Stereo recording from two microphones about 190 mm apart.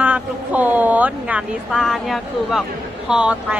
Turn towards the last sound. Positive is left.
turn(degrees=-5)  # may be behind; listen again after turning